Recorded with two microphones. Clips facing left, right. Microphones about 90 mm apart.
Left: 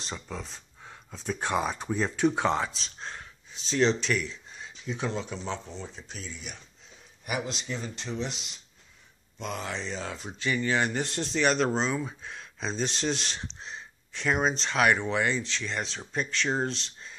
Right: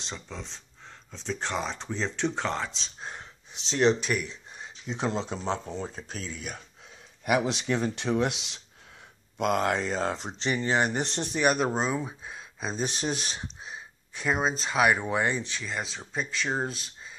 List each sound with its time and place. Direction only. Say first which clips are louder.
0.0 s speech: left 2 dB; 5° left (ahead or behind)
3.0 s speech: even; 15° right (ahead or behind); by 5.6 s 35° right (ahead or behind)
5.7 s speech: right 5 dB; 45° right (ahead or behind)
7.2 s speech: right 7 dB; 70° right (ahead or behind)
9.4 s speech: right 9 dB; 55° right (ahead or behind)
10.2 s speech: even; 25° right (ahead or behind)
15.6 s speech: left 1 dB; 5° right (ahead or behind)